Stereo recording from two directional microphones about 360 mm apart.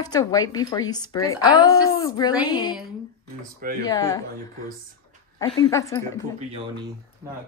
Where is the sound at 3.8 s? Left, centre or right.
Centre.